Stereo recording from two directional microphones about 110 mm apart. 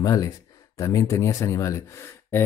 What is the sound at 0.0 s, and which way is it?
Speech, 35° left (ahead or behind).